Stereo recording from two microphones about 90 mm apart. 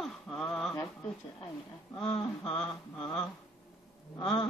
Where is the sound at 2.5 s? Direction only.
10° left (ahead or behind).